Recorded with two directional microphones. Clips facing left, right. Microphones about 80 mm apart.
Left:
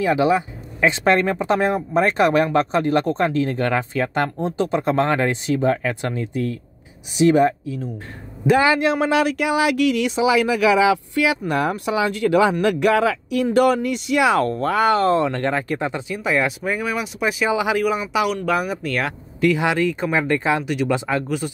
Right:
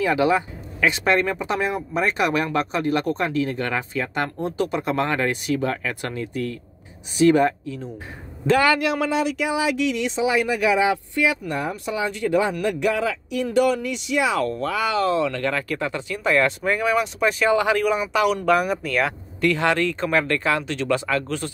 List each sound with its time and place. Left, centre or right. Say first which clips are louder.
0.0 s speech: left 2 dB; left
4.4 s speech: left 3 dB; left
9.4 s speech: left 4 dB; left
14.1 s speech: left 4 dB; left
14.4 s speech: left 5 dB; left
15.5 s speech: left 3 dB; left
16.3 s speech: right 1 dB; centre